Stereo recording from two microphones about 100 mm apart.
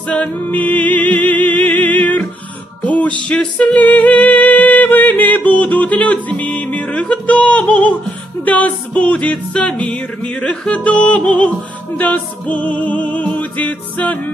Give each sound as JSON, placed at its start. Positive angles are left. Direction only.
{"t": 0.1, "sound": "music", "side_deg": 15}